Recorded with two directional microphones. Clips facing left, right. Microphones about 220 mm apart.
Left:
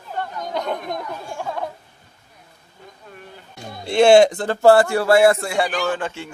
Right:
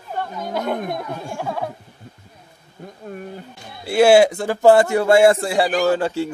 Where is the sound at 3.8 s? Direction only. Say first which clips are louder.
Even; 5° right (ahead or behind).